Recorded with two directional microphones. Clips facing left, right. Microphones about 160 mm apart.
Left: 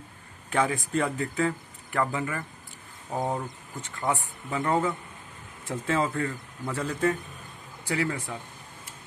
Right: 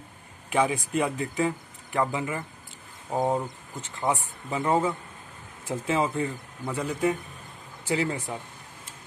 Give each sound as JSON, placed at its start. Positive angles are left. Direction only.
{"t": 0.5, "sound": "speech", "side_deg": -15}
{"t": 7.9, "sound": "speech", "side_deg": -20}